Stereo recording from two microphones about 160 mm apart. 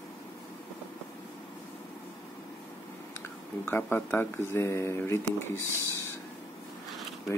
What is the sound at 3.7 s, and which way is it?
Speech, 10° left (ahead or behind).